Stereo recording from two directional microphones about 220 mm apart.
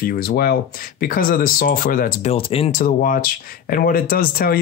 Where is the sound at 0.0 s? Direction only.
40° left (ahead or behind).